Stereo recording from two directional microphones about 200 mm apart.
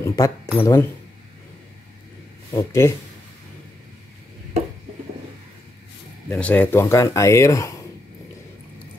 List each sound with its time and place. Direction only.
0.0 s speech: 15° left (ahead or behind)
2.5 s speech: 15° left (ahead or behind)
6.2 s speech: 10° left (ahead or behind)